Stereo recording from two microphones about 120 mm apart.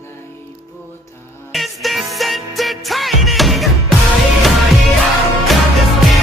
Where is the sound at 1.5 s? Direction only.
Centre (ahead or behind).